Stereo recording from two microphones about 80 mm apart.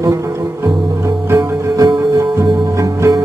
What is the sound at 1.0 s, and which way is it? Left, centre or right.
Music, right.